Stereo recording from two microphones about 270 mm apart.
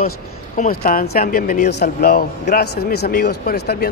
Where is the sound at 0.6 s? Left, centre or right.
Left.